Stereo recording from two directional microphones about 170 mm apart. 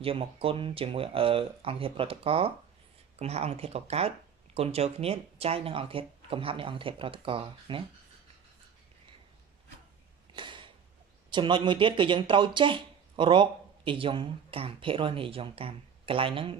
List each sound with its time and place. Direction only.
0.0 s speech: 35° right (ahead or behind)
10.3 s a sound: 30° right (ahead or behind)
11.2 s speech: 30° right (ahead or behind)